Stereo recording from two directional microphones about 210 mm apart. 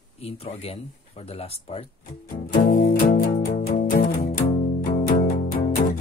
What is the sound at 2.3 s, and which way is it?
Music, 40° left (ahead or behind).